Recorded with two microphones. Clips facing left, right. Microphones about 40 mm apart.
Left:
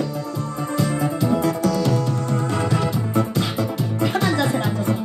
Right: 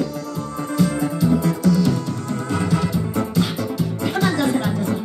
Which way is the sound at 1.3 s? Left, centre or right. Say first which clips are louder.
Right 2 dB; left.